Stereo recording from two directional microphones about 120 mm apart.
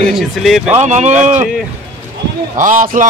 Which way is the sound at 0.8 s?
75° right (ahead or behind).